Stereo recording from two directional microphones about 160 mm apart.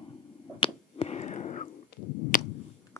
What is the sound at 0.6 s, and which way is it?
Finger snapping, 40° left (ahead or behind).